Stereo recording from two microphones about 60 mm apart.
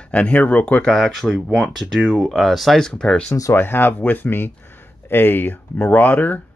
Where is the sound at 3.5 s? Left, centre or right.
Left.